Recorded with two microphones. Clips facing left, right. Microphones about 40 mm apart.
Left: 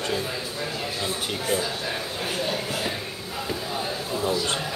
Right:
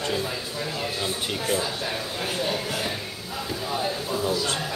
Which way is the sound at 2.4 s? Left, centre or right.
Centre.